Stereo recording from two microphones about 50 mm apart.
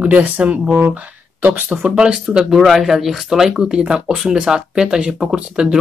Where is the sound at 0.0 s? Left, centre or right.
Right.